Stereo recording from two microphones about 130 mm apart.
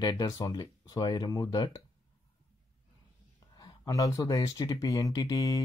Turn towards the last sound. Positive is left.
turn(degrees=25)  # may be behind; listen again after turning